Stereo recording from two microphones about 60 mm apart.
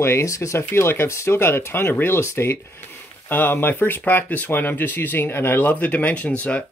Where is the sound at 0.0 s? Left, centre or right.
Left.